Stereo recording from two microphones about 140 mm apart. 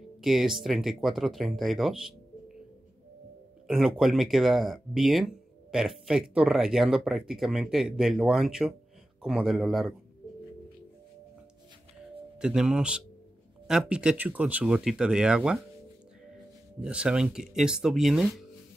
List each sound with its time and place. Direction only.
0.2 s speech: centre (ahead or behind)
3.6 s speech: centre (ahead or behind)
12.4 s speech: 5° right (ahead or behind)
16.8 s speech: 5° right (ahead or behind)